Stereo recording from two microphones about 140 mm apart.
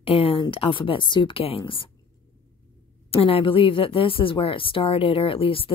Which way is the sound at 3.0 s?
45° left (ahead or behind).